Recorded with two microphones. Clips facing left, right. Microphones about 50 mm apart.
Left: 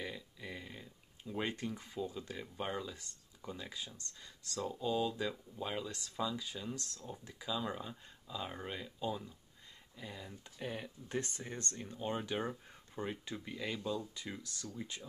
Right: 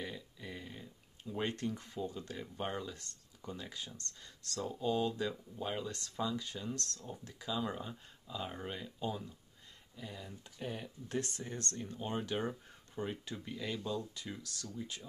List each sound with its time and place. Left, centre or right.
0.0 s a sound: centre
1.4 s speech: centre
7.5 s speech: centre
9.9 s speech: centre
14.1 s speech: centre